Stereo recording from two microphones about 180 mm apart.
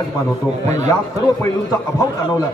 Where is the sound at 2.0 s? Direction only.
20° left (ahead or behind).